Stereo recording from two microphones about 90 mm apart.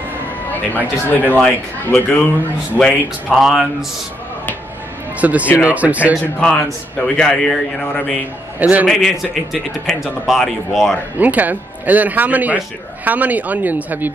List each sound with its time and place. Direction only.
0.5 s speech: 20° left (ahead or behind)
2.8 s speech: centre (ahead or behind)
5.2 s speech: 15° right (ahead or behind)
6.4 s a man's voice: 10° left (ahead or behind)
8.5 s speech: 20° right (ahead or behind)
8.8 s speech: centre (ahead or behind)
11.1 s speech: 20° right (ahead or behind)